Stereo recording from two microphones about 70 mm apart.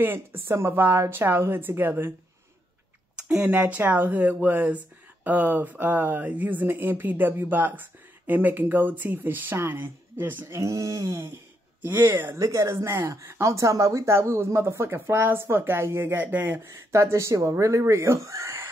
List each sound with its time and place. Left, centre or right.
0.0 s speech: right
3.2 s a sound: centre
3.4 s speech: right
10.5 s speech: right
11.8 s speech: right
12.4 s speech: right
16.6 s speech: right